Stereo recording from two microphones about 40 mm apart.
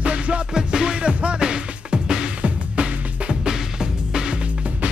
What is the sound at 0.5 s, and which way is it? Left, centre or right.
Music, centre.